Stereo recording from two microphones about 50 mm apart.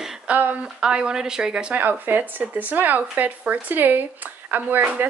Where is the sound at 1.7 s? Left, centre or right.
Right.